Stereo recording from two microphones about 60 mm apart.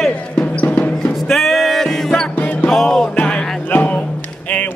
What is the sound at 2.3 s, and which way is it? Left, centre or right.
Music, left.